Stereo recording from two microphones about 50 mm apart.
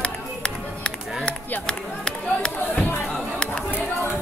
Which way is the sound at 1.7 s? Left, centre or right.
Centre.